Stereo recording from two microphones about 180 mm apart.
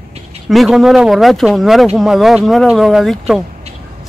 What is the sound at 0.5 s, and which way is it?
A woman's voice, centre (ahead or behind).